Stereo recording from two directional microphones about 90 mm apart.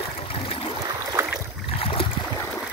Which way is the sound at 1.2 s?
30° right (ahead or behind).